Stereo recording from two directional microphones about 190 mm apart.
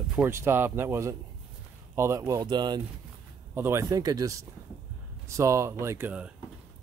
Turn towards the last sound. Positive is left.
turn(degrees=-5)  # may be behind; listen again after turning